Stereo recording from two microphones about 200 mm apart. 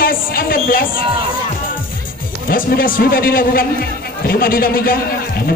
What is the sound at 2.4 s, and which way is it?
A man's voice, 45° left (ahead or behind).